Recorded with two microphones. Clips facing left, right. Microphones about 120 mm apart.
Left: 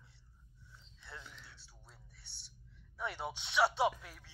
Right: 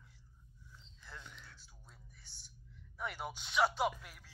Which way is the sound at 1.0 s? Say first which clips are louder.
Left 1 dB; centre (ahead or behind).